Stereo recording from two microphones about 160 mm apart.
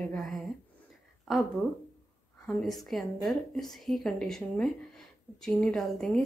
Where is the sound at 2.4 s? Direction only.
Centre (ahead or behind).